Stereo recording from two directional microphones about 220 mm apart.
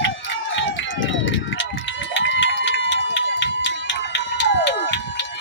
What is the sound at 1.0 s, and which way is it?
Run, 60° left (ahead or behind).